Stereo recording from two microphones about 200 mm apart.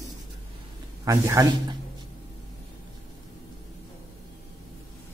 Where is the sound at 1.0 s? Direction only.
15° right (ahead or behind).